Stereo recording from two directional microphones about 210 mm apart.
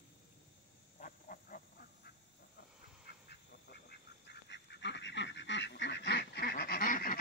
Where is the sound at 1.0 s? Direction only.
40° left (ahead or behind).